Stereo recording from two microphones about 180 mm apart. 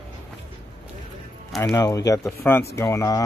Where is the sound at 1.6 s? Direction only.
20° left (ahead or behind).